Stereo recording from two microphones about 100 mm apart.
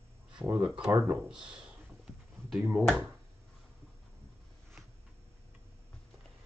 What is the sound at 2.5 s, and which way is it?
Speech, 5° right (ahead or behind).